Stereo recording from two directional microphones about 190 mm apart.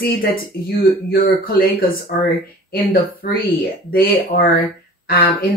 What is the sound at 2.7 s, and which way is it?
Speech, 55° left (ahead or behind).